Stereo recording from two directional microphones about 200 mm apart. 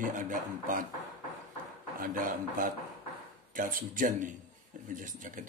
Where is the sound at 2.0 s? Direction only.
45° right (ahead or behind).